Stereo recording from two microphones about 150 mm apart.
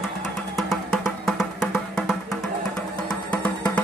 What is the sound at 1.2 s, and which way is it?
Music, centre (ahead or behind).